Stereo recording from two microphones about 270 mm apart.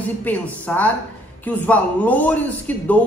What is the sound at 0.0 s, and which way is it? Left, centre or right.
A man's voice, centre.